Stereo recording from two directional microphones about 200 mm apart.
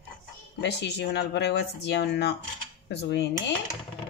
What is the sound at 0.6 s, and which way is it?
Speech, 60° left (ahead or behind).